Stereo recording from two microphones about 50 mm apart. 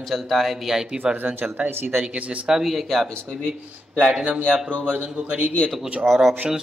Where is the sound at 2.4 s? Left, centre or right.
Centre.